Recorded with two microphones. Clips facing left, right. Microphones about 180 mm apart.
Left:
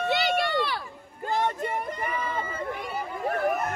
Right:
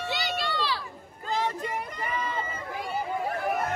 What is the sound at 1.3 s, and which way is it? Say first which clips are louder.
Child singing: left 2 dB; 55° left (ahead or behind).